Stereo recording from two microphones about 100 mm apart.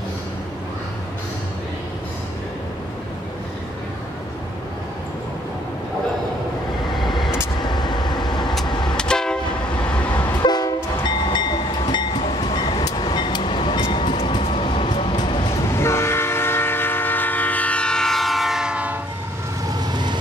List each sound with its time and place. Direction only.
7.0 s vehicle: centre (ahead or behind)
7.6 s vehicle: 45° left (ahead or behind)
8.9 s train: 10° left (ahead or behind)
10.4 s train: 45° left (ahead or behind)
14.5 s vehicle: 65° left (ahead or behind)
15.7 s train: 25° left (ahead or behind); by 18.9 s 10° right (ahead or behind)
19.7 s vehicle: 45° right (ahead or behind)